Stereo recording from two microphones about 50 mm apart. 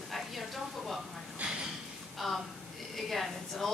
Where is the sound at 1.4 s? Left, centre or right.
Right.